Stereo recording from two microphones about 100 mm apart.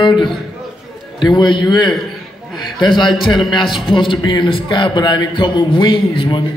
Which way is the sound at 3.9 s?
55° left (ahead or behind).